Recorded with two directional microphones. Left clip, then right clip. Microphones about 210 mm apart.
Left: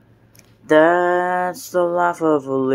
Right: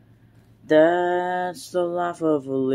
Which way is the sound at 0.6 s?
5° right (ahead or behind).